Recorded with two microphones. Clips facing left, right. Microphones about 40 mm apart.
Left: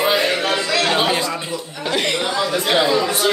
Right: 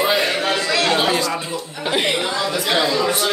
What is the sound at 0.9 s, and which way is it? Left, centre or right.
Speech, centre.